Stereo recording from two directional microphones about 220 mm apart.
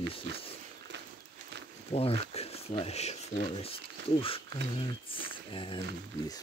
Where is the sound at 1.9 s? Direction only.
25° left (ahead or behind).